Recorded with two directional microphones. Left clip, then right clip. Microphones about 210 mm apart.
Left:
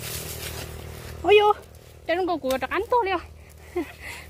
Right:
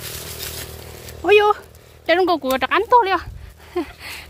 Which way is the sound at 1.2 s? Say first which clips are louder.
Right 3 dB; 20° right (ahead or behind).